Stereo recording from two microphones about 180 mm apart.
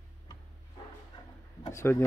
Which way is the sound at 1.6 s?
15° left (ahead or behind).